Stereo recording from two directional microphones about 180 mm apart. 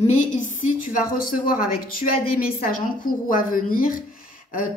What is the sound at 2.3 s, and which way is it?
A woman's voice, 50° left (ahead or behind).